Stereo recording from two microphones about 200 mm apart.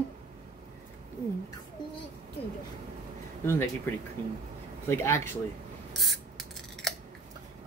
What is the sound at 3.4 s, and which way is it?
Speech, 10° left (ahead or behind).